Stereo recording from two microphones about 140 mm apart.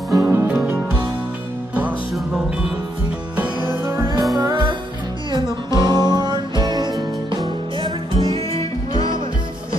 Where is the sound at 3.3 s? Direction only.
10° right (ahead or behind); by 7.9 s 30° right (ahead or behind).